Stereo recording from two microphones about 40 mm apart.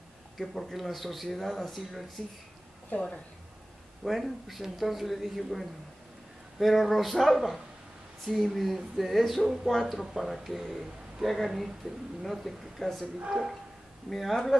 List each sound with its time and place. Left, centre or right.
0.4 s speech: centre
2.9 s speech: left
4.0 s speech: centre
13.3 s speech: centre